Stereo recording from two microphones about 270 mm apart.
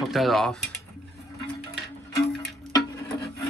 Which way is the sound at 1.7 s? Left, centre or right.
Centre.